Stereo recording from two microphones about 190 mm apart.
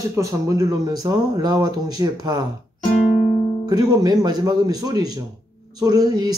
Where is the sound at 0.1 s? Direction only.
15° right (ahead or behind).